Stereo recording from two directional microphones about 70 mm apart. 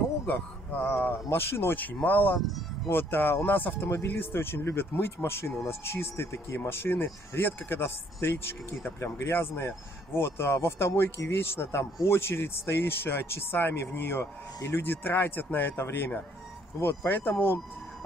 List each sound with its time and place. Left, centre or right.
0.3 s speech: left